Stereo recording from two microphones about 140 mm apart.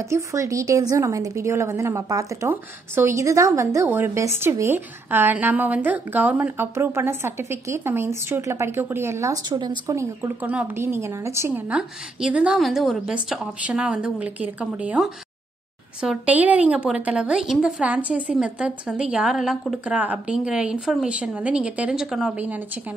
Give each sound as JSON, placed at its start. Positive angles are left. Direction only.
{"t": 0.1, "sound": "a woman's voice", "side_deg": -20}
{"t": 9.8, "sound": "a woman's voice", "side_deg": -20}
{"t": 11.7, "sound": "a woman's voice", "side_deg": -10}